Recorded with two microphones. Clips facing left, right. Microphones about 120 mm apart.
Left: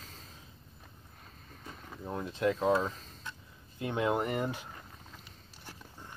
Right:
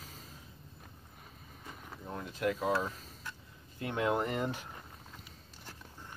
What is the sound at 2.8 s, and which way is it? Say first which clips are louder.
Speech: left 3 dB; 5° right (ahead or behind).